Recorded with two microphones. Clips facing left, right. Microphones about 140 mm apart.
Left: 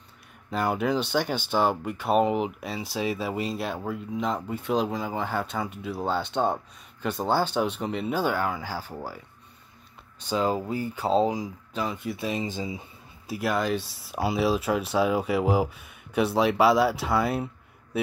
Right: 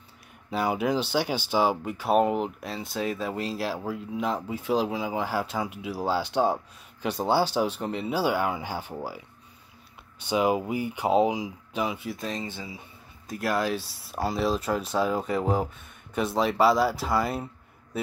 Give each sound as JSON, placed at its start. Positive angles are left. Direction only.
{"t": 0.5, "sound": "speech", "side_deg": -5}
{"t": 13.3, "sound": "speech", "side_deg": 0}